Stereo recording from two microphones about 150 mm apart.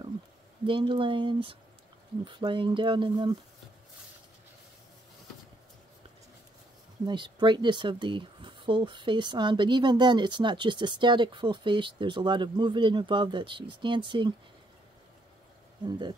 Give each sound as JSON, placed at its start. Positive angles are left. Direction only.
{"t": 0.7, "sound": "speech", "side_deg": -35}
{"t": 7.1, "sound": "speech", "side_deg": -30}
{"t": 15.8, "sound": "speech", "side_deg": -30}